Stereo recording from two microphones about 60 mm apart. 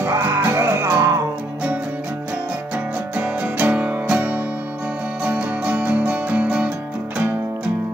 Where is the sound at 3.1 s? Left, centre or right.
Right.